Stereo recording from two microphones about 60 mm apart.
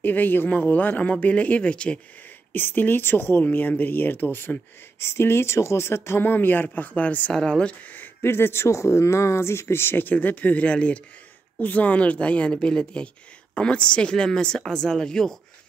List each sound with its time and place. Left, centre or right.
0.0 s speech: left
2.5 s speech: left
5.0 s speech: left
7.3 s speech: centre
8.2 s speech: left
10.1 s speech: left; by 15.3 s centre